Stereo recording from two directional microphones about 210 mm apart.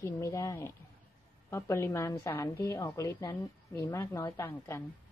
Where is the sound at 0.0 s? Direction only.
15° left (ahead or behind).